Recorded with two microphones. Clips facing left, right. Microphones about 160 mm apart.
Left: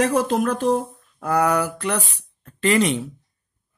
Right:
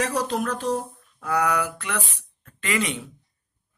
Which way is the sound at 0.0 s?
45° left (ahead or behind).